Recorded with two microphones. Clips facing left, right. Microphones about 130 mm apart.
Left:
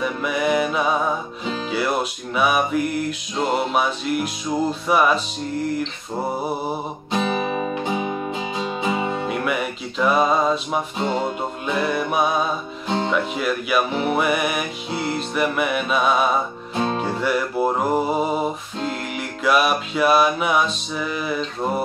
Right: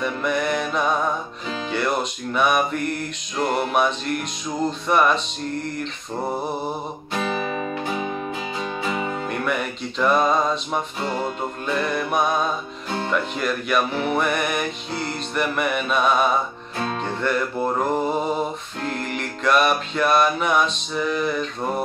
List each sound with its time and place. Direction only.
0.0 s music: 5° left (ahead or behind)
7.1 s music: 20° left (ahead or behind)
9.3 s music: 5° left (ahead or behind)
11.0 s music: 20° left (ahead or behind)
12.8 s music: 20° left (ahead or behind)
13.1 s music: 5° left (ahead or behind)
16.7 s music: 20° left (ahead or behind)
17.0 s music: 10° left (ahead or behind)